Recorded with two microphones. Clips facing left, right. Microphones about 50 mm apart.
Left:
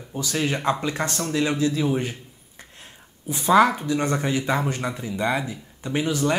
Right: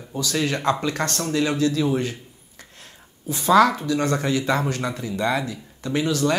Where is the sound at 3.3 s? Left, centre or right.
Left.